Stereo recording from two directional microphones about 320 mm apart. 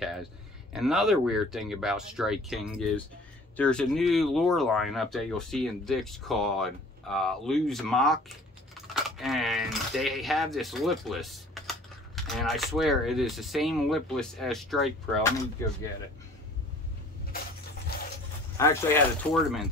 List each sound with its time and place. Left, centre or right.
0.7 s speech: centre
18.6 s speech: centre